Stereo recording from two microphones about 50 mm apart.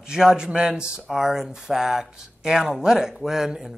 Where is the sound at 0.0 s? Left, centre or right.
Centre.